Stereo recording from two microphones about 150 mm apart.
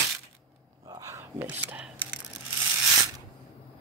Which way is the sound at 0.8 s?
20° right (ahead or behind).